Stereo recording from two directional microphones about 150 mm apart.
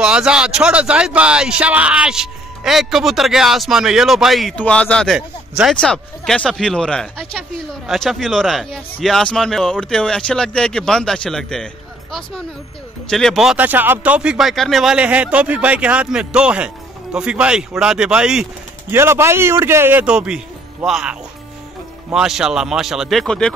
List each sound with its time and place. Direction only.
0.0 s speech: 5° right (ahead or behind)
18.9 s speech: 15° right (ahead or behind); by 23.5 s 5° left (ahead or behind)